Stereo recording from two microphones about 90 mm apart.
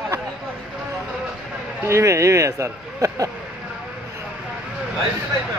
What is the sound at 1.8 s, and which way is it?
Speech, 30° right (ahead or behind).